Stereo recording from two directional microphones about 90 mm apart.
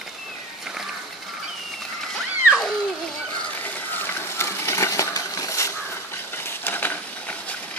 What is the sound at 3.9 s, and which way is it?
Coin, 25° left (ahead or behind).